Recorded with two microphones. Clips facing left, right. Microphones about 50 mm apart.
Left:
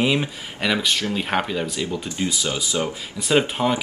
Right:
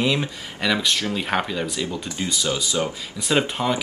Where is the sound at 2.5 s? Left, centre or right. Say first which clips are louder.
Even; centre.